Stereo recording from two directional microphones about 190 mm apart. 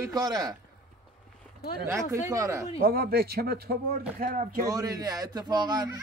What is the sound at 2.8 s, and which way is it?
Speech, 50° right (ahead or behind).